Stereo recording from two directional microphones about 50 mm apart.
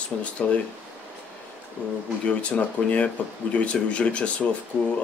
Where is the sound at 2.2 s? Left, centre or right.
Left.